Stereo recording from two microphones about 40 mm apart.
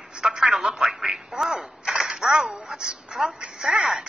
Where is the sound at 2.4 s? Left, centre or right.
Centre.